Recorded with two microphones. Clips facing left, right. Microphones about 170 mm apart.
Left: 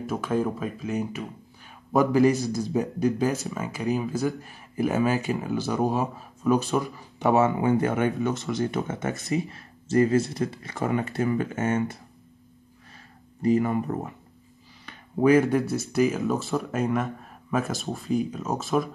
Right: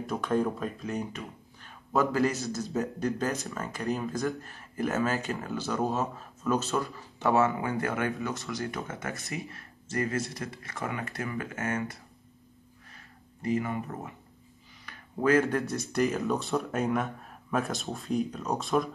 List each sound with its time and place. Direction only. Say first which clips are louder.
0.0 s speech: left 2 dB; 5° left (ahead or behind); by 12.0 s 25° left (ahead or behind)
13.4 s speech: left 7 dB; 35° left (ahead or behind)
14.9 s a sound: left 6 dB; 25° left (ahead or behind)
15.3 s speech: left 5 dB; 15° left (ahead or behind)